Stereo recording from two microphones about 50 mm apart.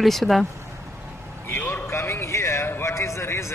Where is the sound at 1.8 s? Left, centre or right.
Left.